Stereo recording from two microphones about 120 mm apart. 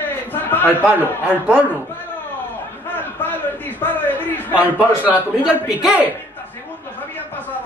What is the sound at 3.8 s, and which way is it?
Speech, 15° left (ahead or behind).